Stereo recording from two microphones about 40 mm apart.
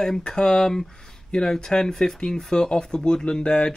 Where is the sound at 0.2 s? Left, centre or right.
Centre.